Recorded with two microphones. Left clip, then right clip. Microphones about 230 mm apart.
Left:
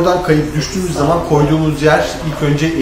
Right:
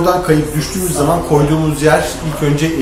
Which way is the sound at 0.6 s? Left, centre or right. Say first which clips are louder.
Even; centre.